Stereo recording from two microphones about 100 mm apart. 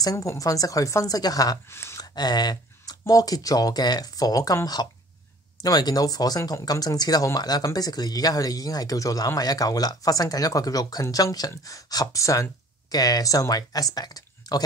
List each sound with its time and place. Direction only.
0.0 s speech: 35° left (ahead or behind)
1.7 s speech: 25° left (ahead or behind)
2.0 s speech: 45° left (ahead or behind)